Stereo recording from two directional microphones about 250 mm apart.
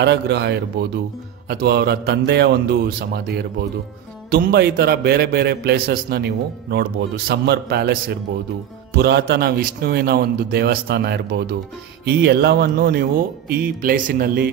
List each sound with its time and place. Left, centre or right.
0.0 s a man's voice: right